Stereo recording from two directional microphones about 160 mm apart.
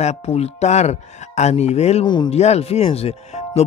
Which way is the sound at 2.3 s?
40° left (ahead or behind).